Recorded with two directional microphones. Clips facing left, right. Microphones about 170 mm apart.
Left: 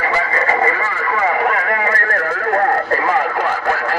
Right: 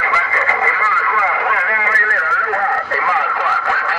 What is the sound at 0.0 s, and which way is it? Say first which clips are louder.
Radio: left 2 dB; 40° left (ahead or behind).